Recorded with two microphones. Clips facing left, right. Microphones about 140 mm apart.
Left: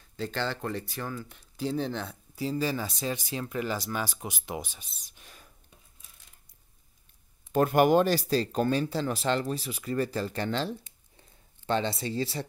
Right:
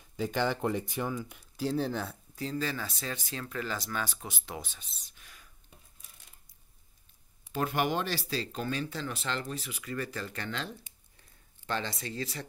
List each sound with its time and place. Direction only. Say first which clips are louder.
0.0 s speech: right 2 dB; 10° right (ahead or behind)
2.5 s speech: left 4 dB; 15° left (ahead or behind)
5.2 s whispering: left 5 dB; 30° left (ahead or behind)
7.5 s speech: left 9 dB; 45° left (ahead or behind)
11.1 s a sound: left 8 dB; 25° left (ahead or behind)